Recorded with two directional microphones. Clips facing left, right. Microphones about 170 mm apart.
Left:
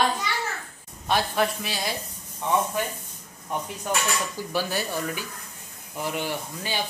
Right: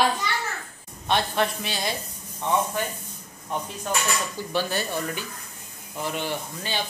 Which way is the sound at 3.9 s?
15° left (ahead or behind).